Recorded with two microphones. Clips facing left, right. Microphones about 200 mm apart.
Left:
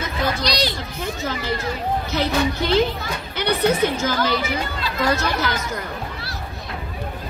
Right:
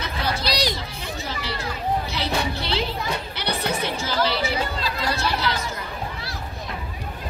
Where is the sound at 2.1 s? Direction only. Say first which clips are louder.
Left 5 dB; 50° left (ahead or behind).